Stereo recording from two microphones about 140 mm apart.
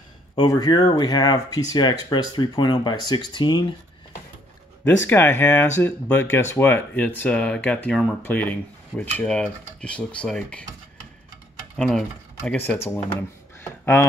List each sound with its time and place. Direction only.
0.4 s speech: 30° left (ahead or behind)
4.8 s speech: 15° left (ahead or behind)
11.7 s speech: 5° left (ahead or behind)
12.4 s speech: 15° left (ahead or behind)